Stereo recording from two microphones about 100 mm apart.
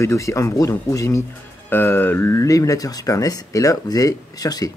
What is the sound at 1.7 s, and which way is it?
Speech, 20° left (ahead or behind).